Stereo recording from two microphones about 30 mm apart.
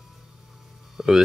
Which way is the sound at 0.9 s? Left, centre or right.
Centre.